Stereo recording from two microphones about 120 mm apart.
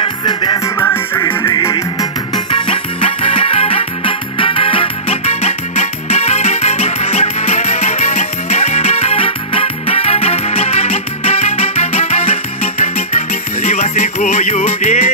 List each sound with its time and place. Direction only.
0.0 s music: 40° left (ahead or behind)
0.7 s music: 20° left (ahead or behind)
2.5 s music: 50° left (ahead or behind)
13.7 s music: 70° left (ahead or behind)